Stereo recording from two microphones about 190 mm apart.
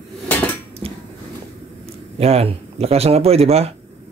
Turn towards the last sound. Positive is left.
turn(degrees=-35)  # may be behind; listen again after turning